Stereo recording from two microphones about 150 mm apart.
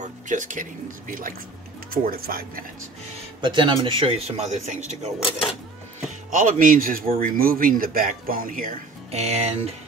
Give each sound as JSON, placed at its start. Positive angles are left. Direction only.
{"t": 0.0, "sound": "speech", "side_deg": -55}
{"t": 1.9, "sound": "speech", "side_deg": -80}
{"t": 3.3, "sound": "speech", "side_deg": -30}
{"t": 9.1, "sound": "speech", "side_deg": -45}